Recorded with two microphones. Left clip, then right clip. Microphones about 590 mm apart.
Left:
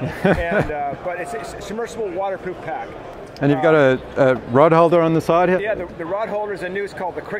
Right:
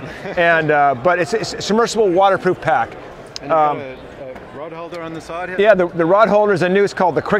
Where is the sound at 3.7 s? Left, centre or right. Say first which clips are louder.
Left 14 dB; left.